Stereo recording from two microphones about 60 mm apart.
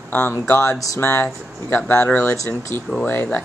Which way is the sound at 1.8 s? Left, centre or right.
Left.